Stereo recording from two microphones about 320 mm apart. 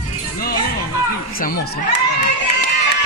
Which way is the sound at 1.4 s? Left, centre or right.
Left.